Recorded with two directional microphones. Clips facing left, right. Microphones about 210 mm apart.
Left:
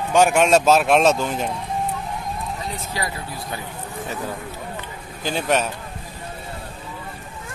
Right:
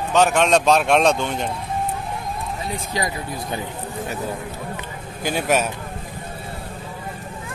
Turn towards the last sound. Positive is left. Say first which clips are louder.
# right 1 dB
turn(degrees=-10)  # may be behind; listen again after turning